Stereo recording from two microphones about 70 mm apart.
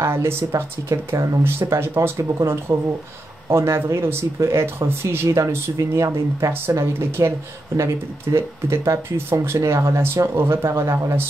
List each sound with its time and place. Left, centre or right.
0.0 s speech: right
1.4 s speech: right
6.8 s speech: right